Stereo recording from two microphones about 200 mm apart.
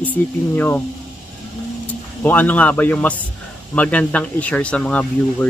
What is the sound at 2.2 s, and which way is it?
A man's voice, 10° left (ahead or behind).